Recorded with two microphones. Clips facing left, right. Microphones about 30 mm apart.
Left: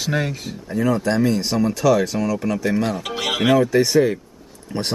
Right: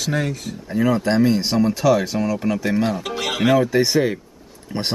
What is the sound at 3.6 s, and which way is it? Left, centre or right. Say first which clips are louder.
Speech: left 2 dB; centre.